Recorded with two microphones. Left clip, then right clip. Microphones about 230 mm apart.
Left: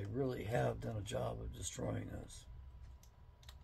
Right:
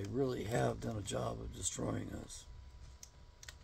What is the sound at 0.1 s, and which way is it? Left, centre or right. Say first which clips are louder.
Speech: right 2 dB; centre.